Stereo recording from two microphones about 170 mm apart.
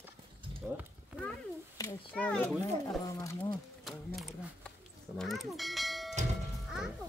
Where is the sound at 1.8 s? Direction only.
10° left (ahead or behind).